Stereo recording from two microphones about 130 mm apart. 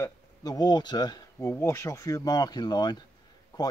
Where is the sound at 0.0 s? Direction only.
30° left (ahead or behind).